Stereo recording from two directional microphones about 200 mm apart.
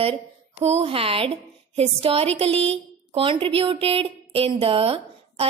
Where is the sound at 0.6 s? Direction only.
30° right (ahead or behind).